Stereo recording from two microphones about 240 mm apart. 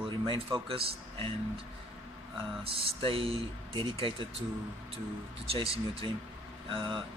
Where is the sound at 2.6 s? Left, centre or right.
Right.